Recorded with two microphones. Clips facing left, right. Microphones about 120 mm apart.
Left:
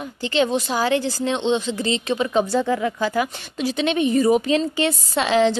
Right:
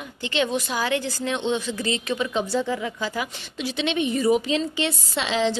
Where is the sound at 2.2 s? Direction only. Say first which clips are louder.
Left 5 dB; 50° left (ahead or behind).